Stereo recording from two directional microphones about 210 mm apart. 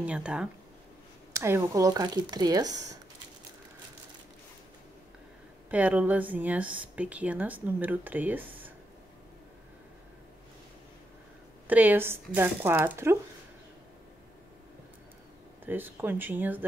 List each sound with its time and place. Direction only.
0.0 s speech: 5° right (ahead or behind)
5.7 s speech: 5° right (ahead or behind)
11.6 s speech: 10° right (ahead or behind)
15.6 s speech: 10° right (ahead or behind)